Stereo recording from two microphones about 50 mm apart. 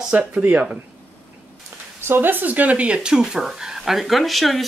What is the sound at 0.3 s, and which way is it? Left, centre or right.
Speech, right.